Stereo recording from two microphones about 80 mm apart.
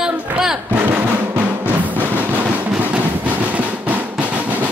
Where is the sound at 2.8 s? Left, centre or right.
Centre.